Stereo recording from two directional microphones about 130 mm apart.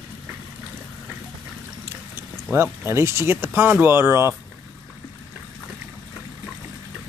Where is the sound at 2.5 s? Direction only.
20° right (ahead or behind).